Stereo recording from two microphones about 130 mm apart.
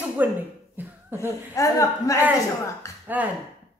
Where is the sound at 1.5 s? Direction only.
25° left (ahead or behind).